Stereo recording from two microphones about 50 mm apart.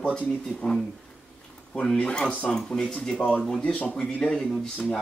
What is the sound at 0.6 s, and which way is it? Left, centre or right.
Speech, centre.